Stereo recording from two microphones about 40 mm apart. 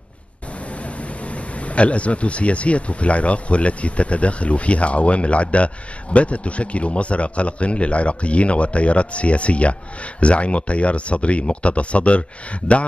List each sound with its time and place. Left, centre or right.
0.8 s speech: left